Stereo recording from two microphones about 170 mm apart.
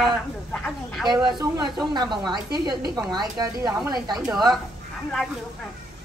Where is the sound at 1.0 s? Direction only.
20° right (ahead or behind).